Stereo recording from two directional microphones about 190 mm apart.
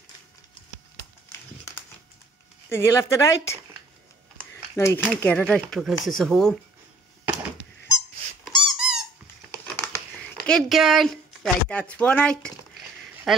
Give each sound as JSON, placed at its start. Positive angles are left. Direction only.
{"t": 2.7, "sound": "speech", "side_deg": 15}
{"t": 4.7, "sound": "speech", "side_deg": 15}
{"t": 8.5, "sound": "squeak", "side_deg": -5}
{"t": 9.8, "sound": "a sound", "side_deg": 5}
{"t": 10.7, "sound": "speech", "side_deg": 0}